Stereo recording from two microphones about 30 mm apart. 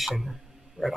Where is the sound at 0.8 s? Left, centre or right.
Centre.